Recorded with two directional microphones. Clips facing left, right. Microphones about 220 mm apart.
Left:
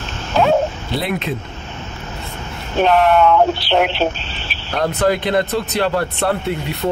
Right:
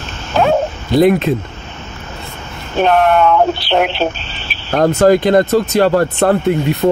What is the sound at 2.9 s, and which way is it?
Speech, 50° right (ahead or behind).